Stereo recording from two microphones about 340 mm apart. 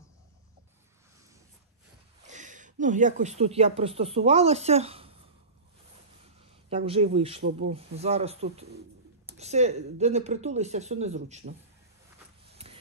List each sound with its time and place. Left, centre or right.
2.2 s speech: right
6.7 s speech: centre